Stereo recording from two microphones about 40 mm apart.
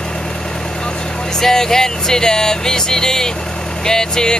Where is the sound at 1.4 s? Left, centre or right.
Centre.